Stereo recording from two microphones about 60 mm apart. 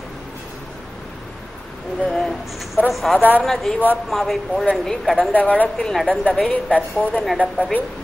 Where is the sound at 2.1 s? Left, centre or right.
Centre.